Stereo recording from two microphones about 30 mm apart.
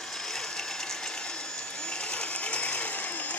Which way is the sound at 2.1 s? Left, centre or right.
Left.